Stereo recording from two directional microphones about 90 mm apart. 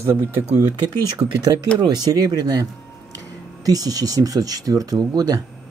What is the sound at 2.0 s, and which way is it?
Speech, 45° right (ahead or behind).